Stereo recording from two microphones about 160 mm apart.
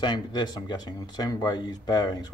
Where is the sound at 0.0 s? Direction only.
25° left (ahead or behind).